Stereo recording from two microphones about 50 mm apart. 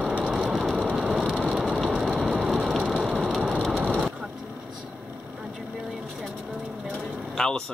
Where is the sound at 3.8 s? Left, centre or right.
Right.